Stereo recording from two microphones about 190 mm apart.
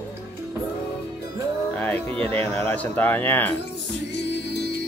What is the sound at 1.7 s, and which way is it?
Speech, 5° left (ahead or behind).